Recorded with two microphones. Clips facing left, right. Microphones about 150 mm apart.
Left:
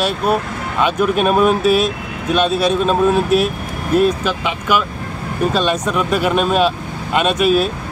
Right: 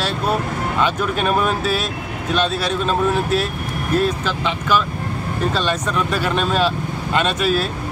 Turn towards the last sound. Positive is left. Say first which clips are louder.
# left 4 dB
turn(degrees=15)  # may be behind; listen again after turning